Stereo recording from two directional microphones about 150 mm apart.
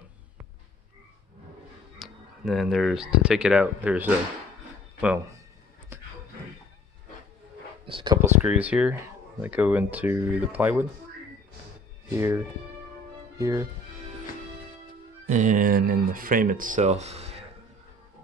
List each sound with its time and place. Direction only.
2.0 s speech: centre (ahead or behind)
7.8 s speech: 30° right (ahead or behind)
8.2 s speech: 10° right (ahead or behind)
12.1 s speech: 20° right (ahead or behind)
15.2 s speech: 55° right (ahead or behind)